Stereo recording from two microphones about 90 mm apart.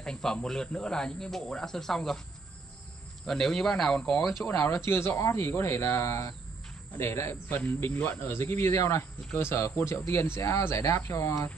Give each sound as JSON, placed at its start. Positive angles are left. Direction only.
{"t": 0.0, "sound": "speech", "side_deg": 5}
{"t": 3.3, "sound": "speech", "side_deg": 5}
{"t": 4.5, "sound": "speech", "side_deg": 30}